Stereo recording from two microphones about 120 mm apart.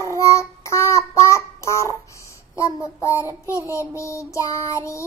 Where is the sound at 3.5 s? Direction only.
25° left (ahead or behind).